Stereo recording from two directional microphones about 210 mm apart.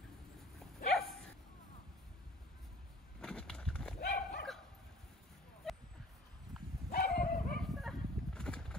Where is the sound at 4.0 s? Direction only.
50° left (ahead or behind).